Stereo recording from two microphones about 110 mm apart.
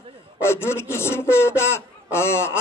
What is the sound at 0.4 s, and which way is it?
A man's voice, 25° left (ahead or behind).